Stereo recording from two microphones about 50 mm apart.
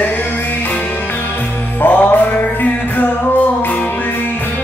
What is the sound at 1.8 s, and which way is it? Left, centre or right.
Music, left.